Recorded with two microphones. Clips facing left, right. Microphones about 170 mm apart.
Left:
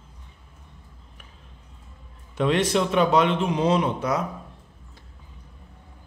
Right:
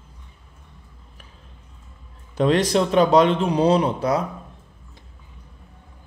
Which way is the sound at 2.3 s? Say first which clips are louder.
Right 3 dB; 35° right (ahead or behind).